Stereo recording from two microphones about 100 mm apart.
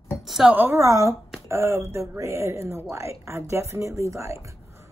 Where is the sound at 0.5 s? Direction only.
25° right (ahead or behind).